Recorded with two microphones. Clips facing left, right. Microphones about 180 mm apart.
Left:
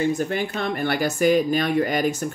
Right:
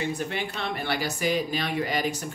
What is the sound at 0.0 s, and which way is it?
Speech, 45° left (ahead or behind).